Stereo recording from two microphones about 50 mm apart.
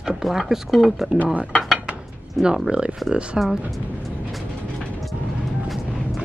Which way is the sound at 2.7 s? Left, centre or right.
Right.